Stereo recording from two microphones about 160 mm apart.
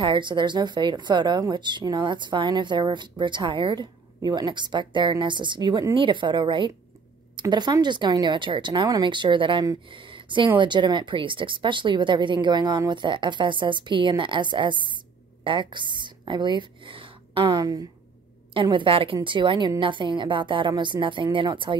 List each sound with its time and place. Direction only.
0.0 s a woman's voice: 30° right (ahead or behind)